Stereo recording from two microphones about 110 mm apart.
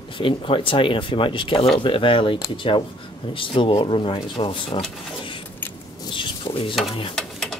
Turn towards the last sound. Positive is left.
turn(degrees=5)  # may be behind; listen again after turning